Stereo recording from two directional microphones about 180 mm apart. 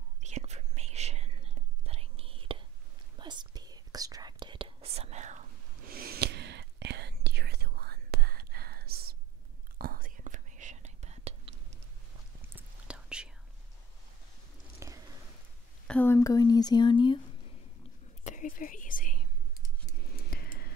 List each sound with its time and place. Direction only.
0.2 s whispering: 40° right (ahead or behind)
12.4 s whispering: 10° right (ahead or behind)
14.8 s a sound: 15° right (ahead or behind)
15.9 s speech: 10° left (ahead or behind)
18.2 s whispering: 45° left (ahead or behind)
20.1 s a sound: 60° left (ahead or behind)